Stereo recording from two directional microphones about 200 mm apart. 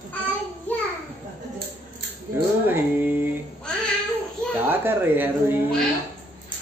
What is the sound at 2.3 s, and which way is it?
Speech, 10° right (ahead or behind).